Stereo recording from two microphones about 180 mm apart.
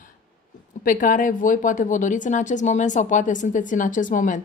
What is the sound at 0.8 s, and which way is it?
A woman's voice, 45° left (ahead or behind).